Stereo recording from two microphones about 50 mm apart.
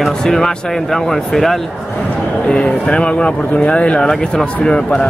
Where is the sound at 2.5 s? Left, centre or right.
Left.